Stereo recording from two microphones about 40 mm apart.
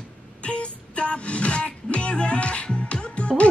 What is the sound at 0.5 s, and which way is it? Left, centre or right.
Music, left.